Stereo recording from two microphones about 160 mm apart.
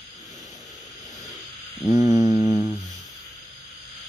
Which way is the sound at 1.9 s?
20° right (ahead or behind).